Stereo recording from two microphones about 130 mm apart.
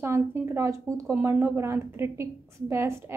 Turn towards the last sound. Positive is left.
turn(degrees=-20)  # may be behind; listen again after turning